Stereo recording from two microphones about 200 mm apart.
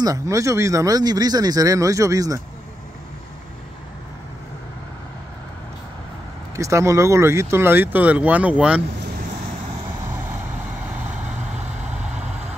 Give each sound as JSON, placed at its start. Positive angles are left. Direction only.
{"t": 0.0, "sound": "speech", "side_deg": -15}
{"t": 6.5, "sound": "speech", "side_deg": -15}